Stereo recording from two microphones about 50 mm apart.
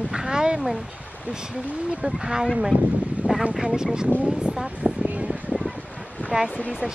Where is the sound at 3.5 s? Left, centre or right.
Centre.